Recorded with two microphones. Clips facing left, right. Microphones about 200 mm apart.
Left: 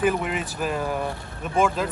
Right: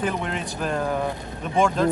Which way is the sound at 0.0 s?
5° left (ahead or behind).